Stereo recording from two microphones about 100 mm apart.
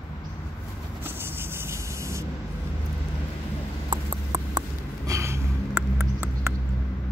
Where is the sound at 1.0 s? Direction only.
20° right (ahead or behind).